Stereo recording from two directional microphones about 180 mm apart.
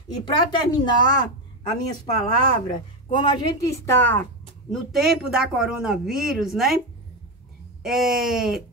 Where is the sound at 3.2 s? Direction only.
25° left (ahead or behind).